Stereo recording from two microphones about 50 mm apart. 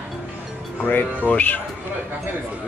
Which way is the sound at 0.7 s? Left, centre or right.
Left.